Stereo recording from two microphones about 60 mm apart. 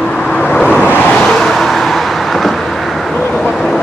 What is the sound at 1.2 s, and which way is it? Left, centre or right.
Vehicle, centre.